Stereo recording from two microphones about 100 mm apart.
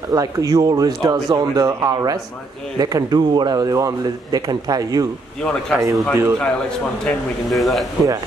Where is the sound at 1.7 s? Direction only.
35° right (ahead or behind).